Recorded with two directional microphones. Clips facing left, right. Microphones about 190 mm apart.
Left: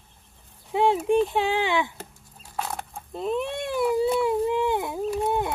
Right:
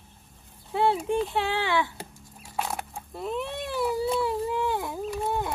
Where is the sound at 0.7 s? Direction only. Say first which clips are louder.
Left 4 dB; 15° left (ahead or behind).